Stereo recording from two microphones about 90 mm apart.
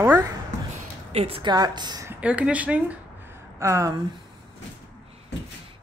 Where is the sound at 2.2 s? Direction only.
15° right (ahead or behind).